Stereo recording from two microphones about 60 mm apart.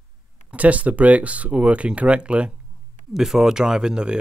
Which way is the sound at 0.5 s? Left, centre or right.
Right.